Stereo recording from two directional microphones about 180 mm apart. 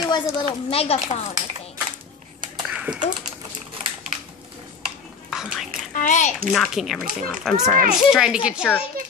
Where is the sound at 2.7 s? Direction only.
5° right (ahead or behind).